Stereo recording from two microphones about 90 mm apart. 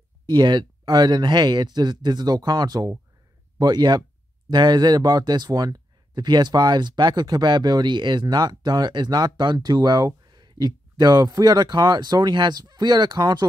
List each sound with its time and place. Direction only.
0.3 s speech: 55° right (ahead or behind)